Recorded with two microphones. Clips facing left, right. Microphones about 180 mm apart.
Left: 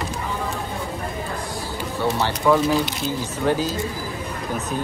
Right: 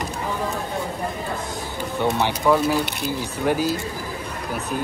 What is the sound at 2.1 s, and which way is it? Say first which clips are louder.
Speech: left 1 dB; 15° right (ahead or behind).